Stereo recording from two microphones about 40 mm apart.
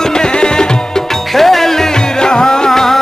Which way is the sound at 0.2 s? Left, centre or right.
Left.